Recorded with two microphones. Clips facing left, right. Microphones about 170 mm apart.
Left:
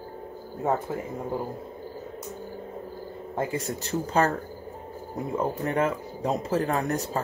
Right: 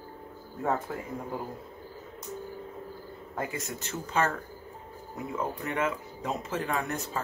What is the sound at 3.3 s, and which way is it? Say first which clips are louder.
Speech: left 6 dB; 30° left (ahead or behind).